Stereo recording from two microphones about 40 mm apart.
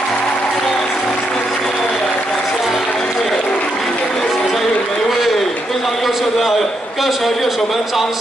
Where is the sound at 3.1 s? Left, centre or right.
Centre.